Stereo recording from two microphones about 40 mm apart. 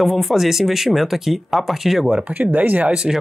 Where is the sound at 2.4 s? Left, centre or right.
Right.